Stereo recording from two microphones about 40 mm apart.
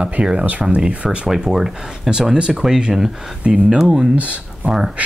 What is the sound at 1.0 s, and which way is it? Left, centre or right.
Speech, centre.